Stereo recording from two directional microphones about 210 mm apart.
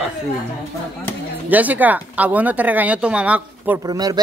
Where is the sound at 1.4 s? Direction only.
10° right (ahead or behind).